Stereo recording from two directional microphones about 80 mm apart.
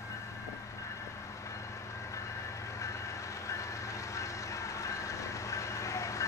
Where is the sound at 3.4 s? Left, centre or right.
Left.